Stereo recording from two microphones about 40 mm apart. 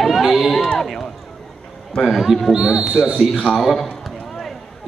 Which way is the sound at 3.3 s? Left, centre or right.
Centre.